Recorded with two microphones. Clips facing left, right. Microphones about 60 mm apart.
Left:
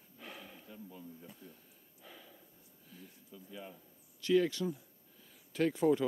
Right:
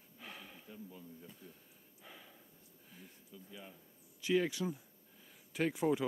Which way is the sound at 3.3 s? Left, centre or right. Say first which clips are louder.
Left 4 dB; centre.